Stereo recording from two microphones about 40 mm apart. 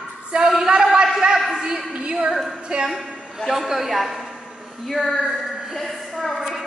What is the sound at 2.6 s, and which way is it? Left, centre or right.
Speech, centre.